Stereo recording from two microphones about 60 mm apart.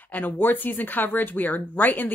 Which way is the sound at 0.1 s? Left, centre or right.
Left.